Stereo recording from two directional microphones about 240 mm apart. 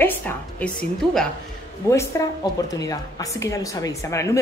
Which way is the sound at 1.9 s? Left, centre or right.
Centre.